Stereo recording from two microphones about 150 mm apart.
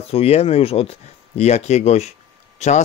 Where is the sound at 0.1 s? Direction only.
40° left (ahead or behind).